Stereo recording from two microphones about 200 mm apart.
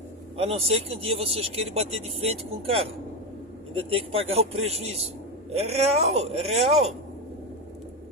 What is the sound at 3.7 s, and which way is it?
A man's voice, 30° right (ahead or behind).